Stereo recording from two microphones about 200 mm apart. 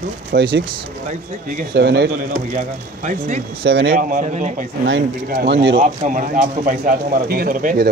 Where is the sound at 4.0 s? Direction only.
40° right (ahead or behind).